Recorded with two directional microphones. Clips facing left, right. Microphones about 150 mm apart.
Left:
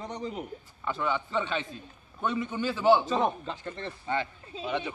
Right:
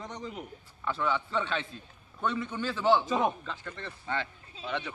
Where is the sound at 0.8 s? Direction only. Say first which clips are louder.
Even; 5° left (ahead or behind).